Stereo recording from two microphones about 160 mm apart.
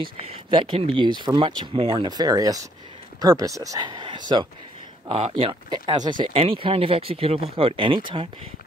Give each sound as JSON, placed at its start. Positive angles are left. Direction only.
{"t": 0.3, "sound": "speech", "side_deg": -35}